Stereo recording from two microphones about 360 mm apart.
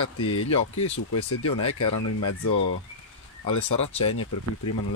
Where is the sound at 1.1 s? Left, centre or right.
Left.